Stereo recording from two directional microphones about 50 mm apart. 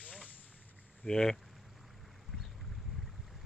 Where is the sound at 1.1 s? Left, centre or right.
Centre.